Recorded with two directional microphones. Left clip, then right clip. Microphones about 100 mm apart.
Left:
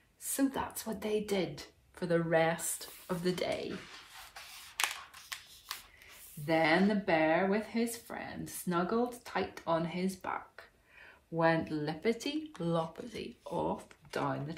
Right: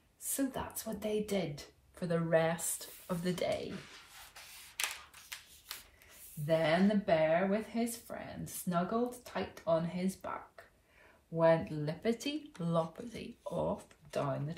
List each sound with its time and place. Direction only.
0.3 s speech: 15° left (ahead or behind)
4.7 s a sound: 55° left (ahead or behind)
6.4 s speech: 15° left (ahead or behind)
11.3 s speech: 15° left (ahead or behind)